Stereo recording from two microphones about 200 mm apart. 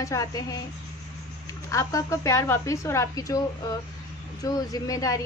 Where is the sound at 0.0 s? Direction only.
15° left (ahead or behind).